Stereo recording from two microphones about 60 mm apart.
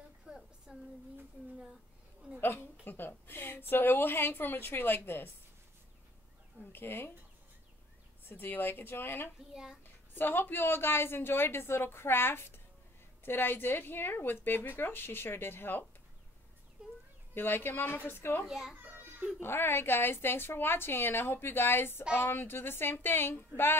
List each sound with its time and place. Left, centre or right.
0.3 s a sound: centre
0.7 s a child's voice: centre
2.4 s a woman's voice: left
6.7 s a woman's voice: left
8.3 s a woman's voice: left
9.5 s a child's voice: centre
10.1 s a woman's voice: left
16.8 s a sound: centre
17.3 s a woman's voice: left
18.4 s a child's voice: centre
18.8 s a sound: right
19.4 s a woman's voice: left